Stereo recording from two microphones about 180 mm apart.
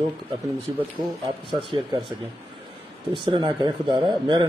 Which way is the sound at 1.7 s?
25° right (ahead or behind).